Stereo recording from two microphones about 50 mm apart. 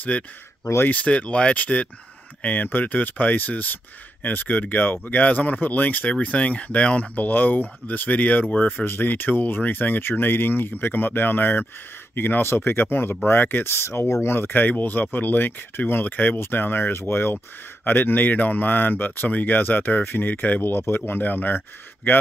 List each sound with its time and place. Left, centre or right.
0.1 s speech: left
8.6 s speech: left
14.2 s speech: left